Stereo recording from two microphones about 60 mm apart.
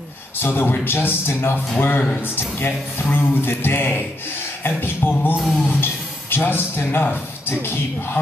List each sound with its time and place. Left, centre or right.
0.4 s a man's voice: left